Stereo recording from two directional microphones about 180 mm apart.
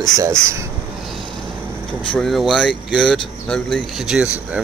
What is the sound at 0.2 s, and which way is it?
Speech, 15° right (ahead or behind).